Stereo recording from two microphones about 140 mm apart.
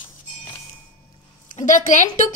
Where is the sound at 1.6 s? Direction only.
65° left (ahead or behind).